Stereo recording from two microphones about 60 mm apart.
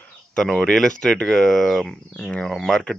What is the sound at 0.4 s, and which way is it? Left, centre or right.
Speech, centre.